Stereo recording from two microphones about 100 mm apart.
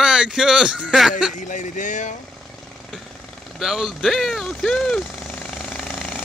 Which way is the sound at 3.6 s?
5° right (ahead or behind).